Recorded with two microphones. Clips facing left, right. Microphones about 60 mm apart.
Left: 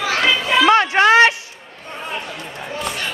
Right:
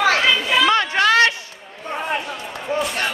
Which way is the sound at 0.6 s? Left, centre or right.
Left.